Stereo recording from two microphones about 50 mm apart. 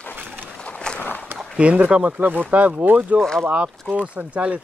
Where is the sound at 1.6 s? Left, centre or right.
Right.